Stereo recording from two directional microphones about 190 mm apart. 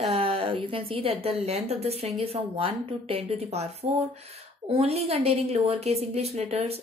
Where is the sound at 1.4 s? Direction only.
35° right (ahead or behind).